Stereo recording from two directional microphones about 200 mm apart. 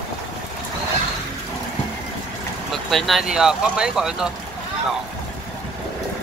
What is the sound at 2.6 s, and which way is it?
Speech, centre (ahead or behind).